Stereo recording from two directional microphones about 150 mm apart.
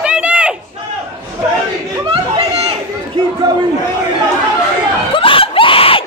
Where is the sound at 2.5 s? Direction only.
40° right (ahead or behind).